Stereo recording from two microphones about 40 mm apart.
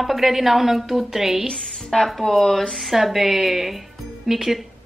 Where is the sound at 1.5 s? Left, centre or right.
Centre.